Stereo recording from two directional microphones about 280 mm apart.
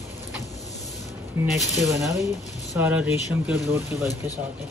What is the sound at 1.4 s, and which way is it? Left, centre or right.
Speech, centre.